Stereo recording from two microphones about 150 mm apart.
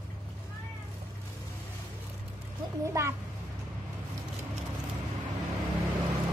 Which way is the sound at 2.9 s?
20° right (ahead or behind).